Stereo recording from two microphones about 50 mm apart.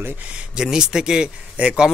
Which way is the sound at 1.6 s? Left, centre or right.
Right.